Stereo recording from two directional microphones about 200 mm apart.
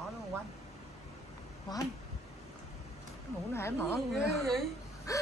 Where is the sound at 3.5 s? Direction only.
15° left (ahead or behind).